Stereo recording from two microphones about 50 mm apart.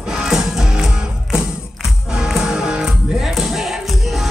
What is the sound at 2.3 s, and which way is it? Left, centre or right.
Music, centre.